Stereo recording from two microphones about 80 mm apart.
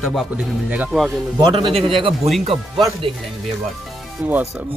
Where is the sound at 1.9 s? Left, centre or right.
Right.